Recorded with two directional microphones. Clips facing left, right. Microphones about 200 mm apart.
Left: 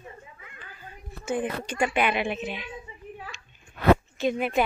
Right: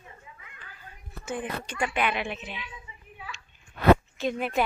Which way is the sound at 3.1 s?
40° left (ahead or behind).